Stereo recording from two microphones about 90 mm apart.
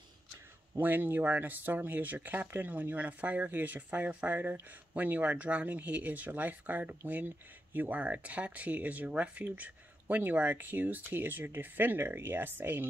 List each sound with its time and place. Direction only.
0.7 s speech: 20° right (ahead or behind)